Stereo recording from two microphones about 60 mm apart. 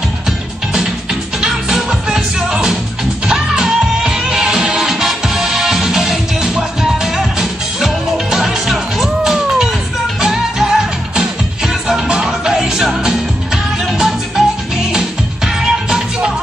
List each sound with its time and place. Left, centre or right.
1.4 s music: centre